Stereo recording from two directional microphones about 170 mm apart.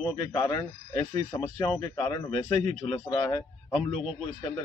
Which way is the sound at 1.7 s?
25° left (ahead or behind).